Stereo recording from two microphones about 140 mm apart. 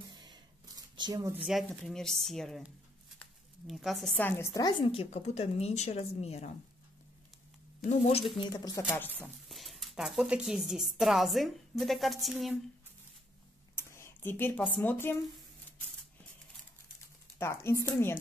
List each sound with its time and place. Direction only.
0.1 s a sound: 30° right (ahead or behind)
1.4 s speech: centre (ahead or behind)
3.6 s speech: centre (ahead or behind)
4.2 s a woman's voice: 15° left (ahead or behind); by 6.5 s 50° left (ahead or behind)
7.8 s a woman's voice: 50° left (ahead or behind)
8.4 s speech: 30° left (ahead or behind)
9.5 s speech: centre (ahead or behind)
13.7 s speech: 20° left (ahead or behind)
17.4 s a woman's voice: 20° left (ahead or behind)